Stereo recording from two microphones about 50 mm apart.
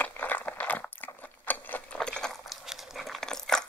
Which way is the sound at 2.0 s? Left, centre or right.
Centre.